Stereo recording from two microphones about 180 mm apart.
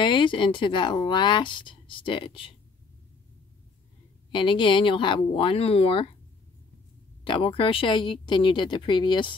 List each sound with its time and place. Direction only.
0.0 s speech: 25° left (ahead or behind)
4.3 s speech: 25° left (ahead or behind)
7.2 s speech: 30° left (ahead or behind)